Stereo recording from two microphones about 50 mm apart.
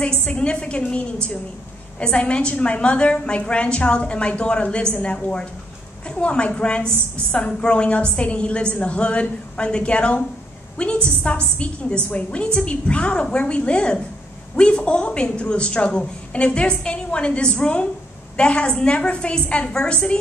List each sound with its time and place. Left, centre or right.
0.0 s a woman's voice: left